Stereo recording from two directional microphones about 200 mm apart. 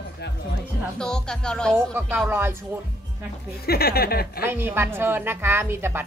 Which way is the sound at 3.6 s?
50° left (ahead or behind).